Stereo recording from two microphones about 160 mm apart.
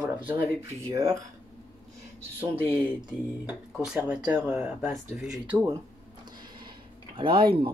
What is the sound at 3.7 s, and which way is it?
Speech, 5° right (ahead or behind).